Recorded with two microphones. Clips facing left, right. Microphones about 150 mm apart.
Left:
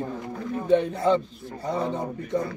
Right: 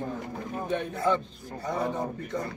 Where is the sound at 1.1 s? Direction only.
25° left (ahead or behind).